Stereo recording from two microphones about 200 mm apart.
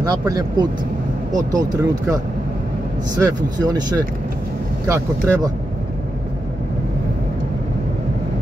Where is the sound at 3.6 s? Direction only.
20° right (ahead or behind).